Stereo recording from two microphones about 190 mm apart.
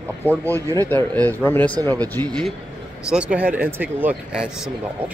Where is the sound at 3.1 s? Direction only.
5° right (ahead or behind).